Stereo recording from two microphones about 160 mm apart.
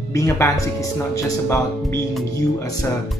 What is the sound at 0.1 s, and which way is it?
Speech, 20° left (ahead or behind).